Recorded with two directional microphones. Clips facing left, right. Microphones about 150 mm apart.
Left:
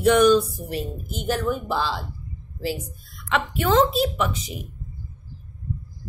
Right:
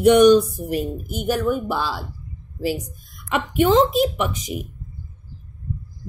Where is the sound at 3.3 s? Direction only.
15° right (ahead or behind).